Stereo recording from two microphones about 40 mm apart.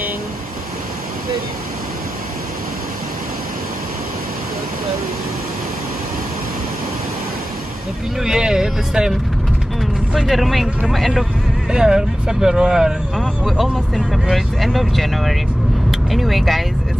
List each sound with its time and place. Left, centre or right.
8.2 s speech: centre
10.1 s speech: centre
11.7 s speech: centre
14.3 s speech: centre